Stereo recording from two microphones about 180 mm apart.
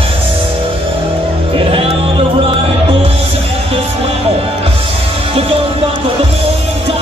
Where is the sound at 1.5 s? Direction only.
30° right (ahead or behind).